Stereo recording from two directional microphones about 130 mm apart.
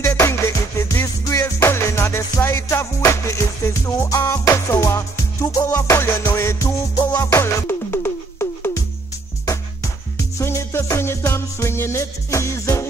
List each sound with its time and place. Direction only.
0.0 s music: 20° left (ahead or behind)
10.1 s music: 20° left (ahead or behind)